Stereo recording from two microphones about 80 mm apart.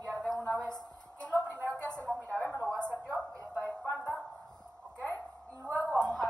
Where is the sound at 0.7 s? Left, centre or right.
Left.